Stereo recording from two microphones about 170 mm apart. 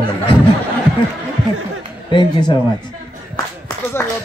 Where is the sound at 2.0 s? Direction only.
30° left (ahead or behind).